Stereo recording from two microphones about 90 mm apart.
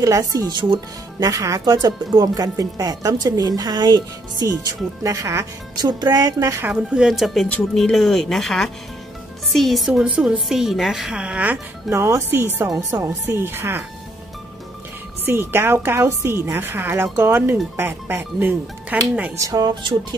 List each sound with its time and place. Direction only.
0.0 s speech: 40° right (ahead or behind); by 0.7 s 55° right (ahead or behind)
1.2 s speech: 40° right (ahead or behind)
1.6 s speech: 50° right (ahead or behind)
5.9 s speech: 50° right (ahead or behind)
6.7 s speech: 10° right (ahead or behind)
9.8 s a woman's voice: 10° right (ahead or behind)
11.9 s a woman's voice: 30° right (ahead or behind)
15.2 s a woman's voice: 25° right (ahead or behind)
19.3 s speech: 40° right (ahead or behind)
19.6 s speech: 55° right (ahead or behind)